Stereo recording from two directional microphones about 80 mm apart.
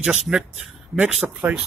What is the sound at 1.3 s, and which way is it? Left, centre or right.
Speech, centre.